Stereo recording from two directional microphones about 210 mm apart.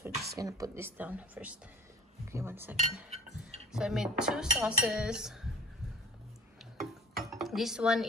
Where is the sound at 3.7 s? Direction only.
Centre (ahead or behind).